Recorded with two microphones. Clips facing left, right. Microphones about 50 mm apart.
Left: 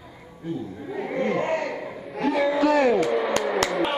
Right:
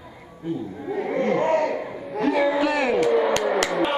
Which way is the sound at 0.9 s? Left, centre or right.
Centre.